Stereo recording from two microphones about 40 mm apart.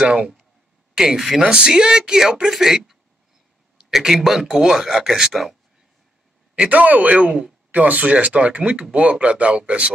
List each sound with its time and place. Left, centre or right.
0.0 s speech: right
6.7 s speech: right